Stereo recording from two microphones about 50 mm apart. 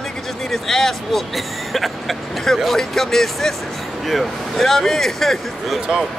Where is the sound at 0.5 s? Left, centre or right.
Centre.